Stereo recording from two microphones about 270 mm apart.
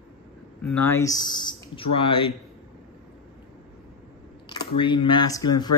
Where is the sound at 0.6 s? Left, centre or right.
Centre.